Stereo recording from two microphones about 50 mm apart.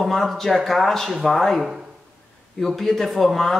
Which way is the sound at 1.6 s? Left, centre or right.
Centre.